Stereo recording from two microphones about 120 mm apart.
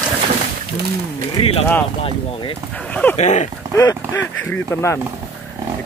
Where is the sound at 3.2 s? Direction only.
75° left (ahead or behind).